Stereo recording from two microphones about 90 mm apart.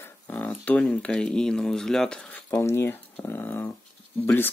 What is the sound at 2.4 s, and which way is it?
Speech, 35° left (ahead or behind).